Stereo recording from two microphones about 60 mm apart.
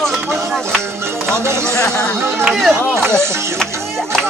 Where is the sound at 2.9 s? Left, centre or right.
Right.